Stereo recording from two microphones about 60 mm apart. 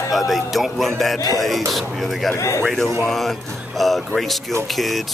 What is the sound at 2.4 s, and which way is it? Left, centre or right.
Speech, left.